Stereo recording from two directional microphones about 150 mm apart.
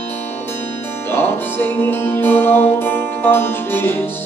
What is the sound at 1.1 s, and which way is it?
Music, 15° left (ahead or behind).